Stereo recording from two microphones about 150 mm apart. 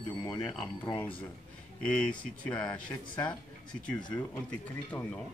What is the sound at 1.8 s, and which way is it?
Speech, 5° left (ahead or behind).